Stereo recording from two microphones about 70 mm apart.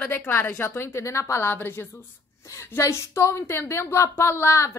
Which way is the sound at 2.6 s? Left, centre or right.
Left.